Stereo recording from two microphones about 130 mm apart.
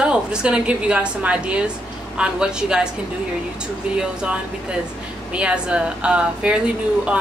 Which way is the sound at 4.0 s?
5° right (ahead or behind).